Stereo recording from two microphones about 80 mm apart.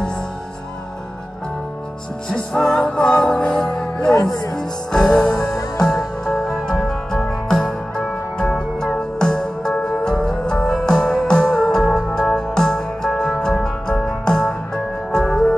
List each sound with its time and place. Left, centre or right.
2.2 s music: centre
4.2 s speech: left
4.6 s music: centre